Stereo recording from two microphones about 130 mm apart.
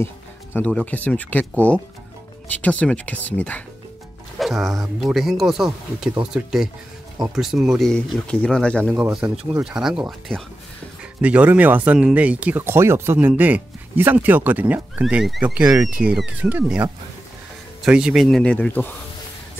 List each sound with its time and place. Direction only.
0.0 s music: 20° left (ahead or behind)
0.7 s speech: 10° left (ahead or behind)
4.4 s speech: centre (ahead or behind)
9.2 s speech: 15° right (ahead or behind)
9.6 s speech: 5° right (ahead or behind); by 18.9 s 10° left (ahead or behind)